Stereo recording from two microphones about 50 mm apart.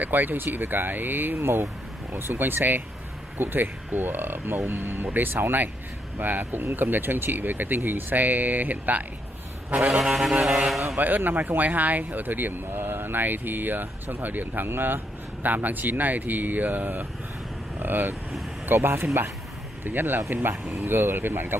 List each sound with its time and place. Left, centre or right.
0.0 s speech: right
9.7 s vehicle: right
10.0 s vehicle: centre
11.0 s speech: right
18.7 s speech: right